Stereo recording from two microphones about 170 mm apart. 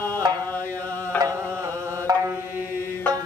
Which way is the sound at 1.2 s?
15° right (ahead or behind).